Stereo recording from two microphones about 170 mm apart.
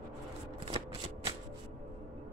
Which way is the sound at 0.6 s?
30° right (ahead or behind).